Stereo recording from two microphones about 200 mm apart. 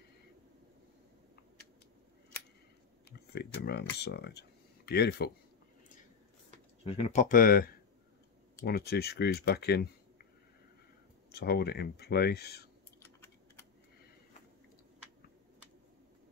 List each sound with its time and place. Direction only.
3.1 s speech: 55° left (ahead or behind)
6.5 s speech: 35° left (ahead or behind); by 10.2 s 55° left (ahead or behind)
11.3 s speech: 55° left (ahead or behind)